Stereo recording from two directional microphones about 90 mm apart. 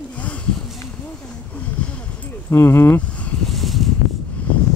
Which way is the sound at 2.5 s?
30° left (ahead or behind).